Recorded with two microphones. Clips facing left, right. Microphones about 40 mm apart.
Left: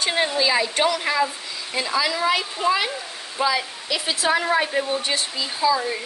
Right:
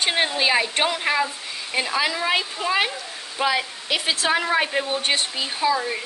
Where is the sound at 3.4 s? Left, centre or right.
Right.